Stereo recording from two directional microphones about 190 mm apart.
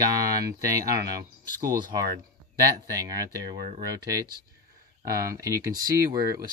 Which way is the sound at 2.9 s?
20° right (ahead or behind).